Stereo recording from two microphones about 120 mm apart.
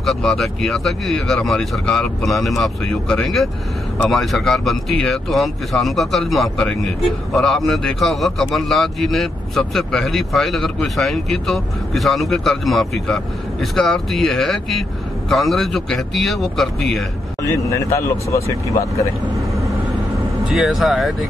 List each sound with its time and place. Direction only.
0.0 s speech: 5° left (ahead or behind)
17.5 s speech: 25° left (ahead or behind)
20.4 s speech: centre (ahead or behind)